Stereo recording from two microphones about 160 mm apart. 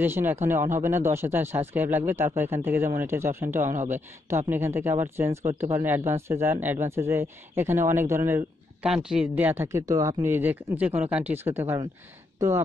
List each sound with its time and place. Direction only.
0.0 s speech: 15° right (ahead or behind)
8.8 s speech: 5° right (ahead or behind); by 12.6 s 20° right (ahead or behind)